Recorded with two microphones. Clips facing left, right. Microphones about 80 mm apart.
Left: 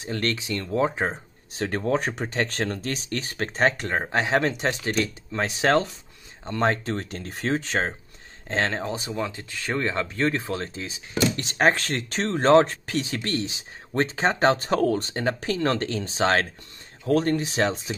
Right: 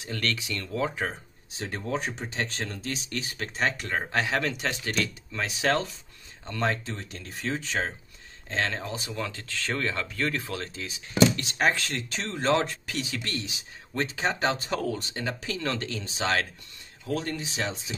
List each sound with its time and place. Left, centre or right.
0.0 s speech: left
1.5 s speech: left
3.9 s speech: left
6.8 s speech: left